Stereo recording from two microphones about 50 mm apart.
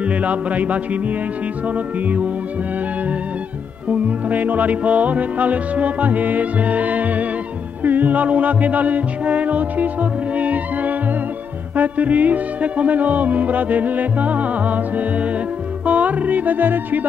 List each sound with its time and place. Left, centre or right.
0.0 s music: right
3.9 s music: right